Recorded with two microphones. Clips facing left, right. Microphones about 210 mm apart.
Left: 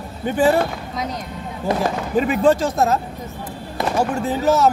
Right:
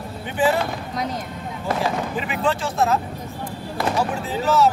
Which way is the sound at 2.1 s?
40° left (ahead or behind).